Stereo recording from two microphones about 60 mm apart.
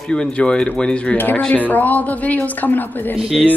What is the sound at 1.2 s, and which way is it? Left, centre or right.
A woman's voice, left.